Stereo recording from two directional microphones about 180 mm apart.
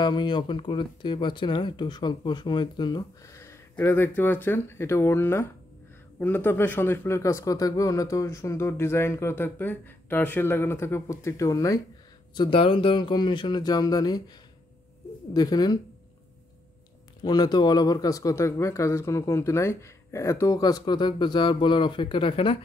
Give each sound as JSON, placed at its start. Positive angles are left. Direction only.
{"t": 0.0, "sound": "speech", "side_deg": 25}
{"t": 15.3, "sound": "speech", "side_deg": 20}
{"t": 17.2, "sound": "speech", "side_deg": 20}